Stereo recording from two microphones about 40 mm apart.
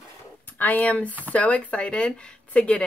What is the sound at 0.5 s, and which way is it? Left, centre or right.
Speech, left.